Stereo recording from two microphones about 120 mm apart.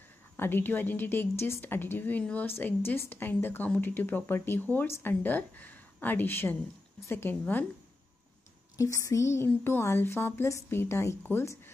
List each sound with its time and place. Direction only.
0.4 s a woman's voice: 15° left (ahead or behind)
8.7 s speech: 25° left (ahead or behind)